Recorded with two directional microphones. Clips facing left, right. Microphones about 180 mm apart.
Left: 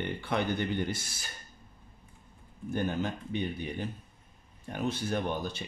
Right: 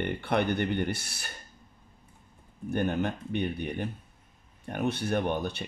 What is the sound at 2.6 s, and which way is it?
Speech, 60° right (ahead or behind).